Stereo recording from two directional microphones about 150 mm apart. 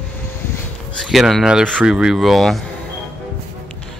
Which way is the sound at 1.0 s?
Centre (ahead or behind).